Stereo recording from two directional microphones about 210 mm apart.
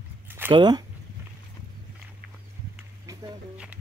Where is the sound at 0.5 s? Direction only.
20° right (ahead or behind).